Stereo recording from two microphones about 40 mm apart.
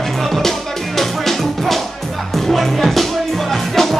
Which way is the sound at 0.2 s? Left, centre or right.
Centre.